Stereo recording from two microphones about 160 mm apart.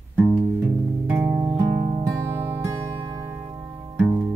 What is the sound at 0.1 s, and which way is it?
Music, 10° right (ahead or behind).